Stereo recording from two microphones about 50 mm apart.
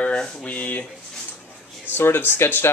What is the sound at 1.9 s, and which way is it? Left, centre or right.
Speech, left.